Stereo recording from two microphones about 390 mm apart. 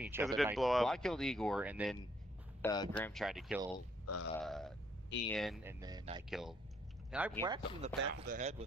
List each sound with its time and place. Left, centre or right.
0.0 s speech: centre
2.6 s speech: centre
4.0 s speech: left
4.4 s speech: centre